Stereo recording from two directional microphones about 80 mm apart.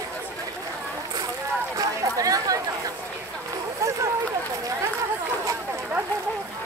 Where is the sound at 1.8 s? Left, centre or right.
Right.